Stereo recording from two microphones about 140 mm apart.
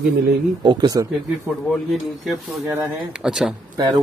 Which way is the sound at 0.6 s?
35° right (ahead or behind).